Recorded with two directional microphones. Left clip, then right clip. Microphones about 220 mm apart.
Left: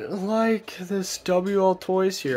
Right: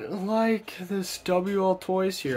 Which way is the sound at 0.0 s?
20° left (ahead or behind).